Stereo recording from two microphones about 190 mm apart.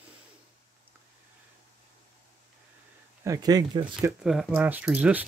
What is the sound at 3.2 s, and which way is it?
Speech, 20° right (ahead or behind).